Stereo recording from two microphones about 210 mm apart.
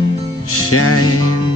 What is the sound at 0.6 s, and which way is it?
Music, 90° left.